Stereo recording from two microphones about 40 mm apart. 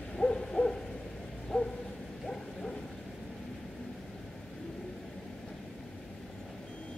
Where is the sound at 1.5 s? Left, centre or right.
Centre.